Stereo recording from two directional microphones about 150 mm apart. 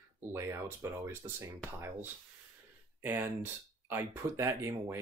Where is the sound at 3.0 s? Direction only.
15° right (ahead or behind).